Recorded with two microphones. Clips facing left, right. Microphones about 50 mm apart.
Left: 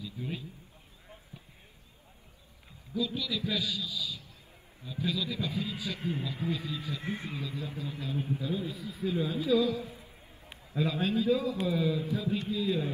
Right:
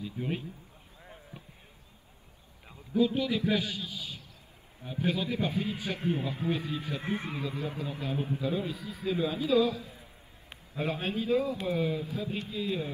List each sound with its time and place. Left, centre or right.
0.0 s a man's voice: right
1.3 s basketball bounce: right
2.9 s a man's voice: right
7.0 s speech: right
7.2 s a man's voice: right
10.8 s a man's voice: right